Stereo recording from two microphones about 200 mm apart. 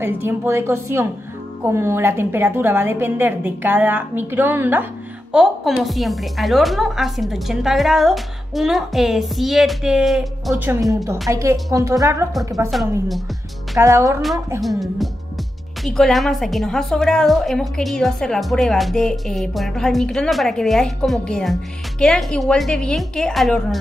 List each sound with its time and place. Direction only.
0.0 s a woman's voice: 10° right (ahead or behind)
10.5 s a woman's voice: 15° right (ahead or behind)
13.7 s a woman's voice: 15° right (ahead or behind)
14.6 s a woman's voice: centre (ahead or behind)